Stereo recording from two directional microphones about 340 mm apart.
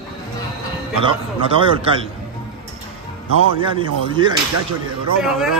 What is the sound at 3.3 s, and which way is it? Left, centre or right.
Speech, left.